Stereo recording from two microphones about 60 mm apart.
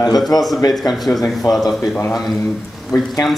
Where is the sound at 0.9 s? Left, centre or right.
Centre.